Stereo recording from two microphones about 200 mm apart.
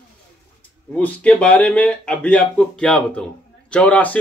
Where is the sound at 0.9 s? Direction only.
5° left (ahead or behind).